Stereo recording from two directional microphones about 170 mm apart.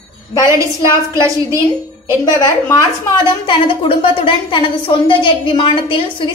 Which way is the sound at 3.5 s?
30° left (ahead or behind).